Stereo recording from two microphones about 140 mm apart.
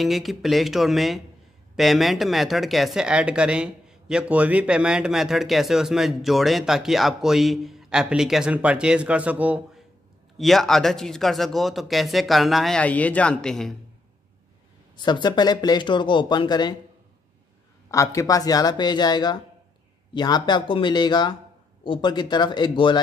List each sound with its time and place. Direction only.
0.0 s speech: centre (ahead or behind)
10.3 s speech: centre (ahead or behind)
15.0 s speech: 30° left (ahead or behind)
17.9 s speech: 20° left (ahead or behind)